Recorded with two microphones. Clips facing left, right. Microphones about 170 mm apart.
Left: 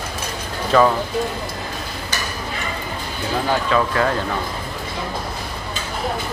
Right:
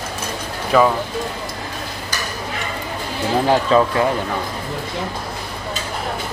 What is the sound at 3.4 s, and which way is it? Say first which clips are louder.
Speech: right 4 dB; 30° right (ahead or behind).